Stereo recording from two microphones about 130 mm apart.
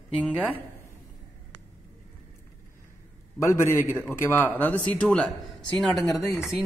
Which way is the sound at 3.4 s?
20° left (ahead or behind).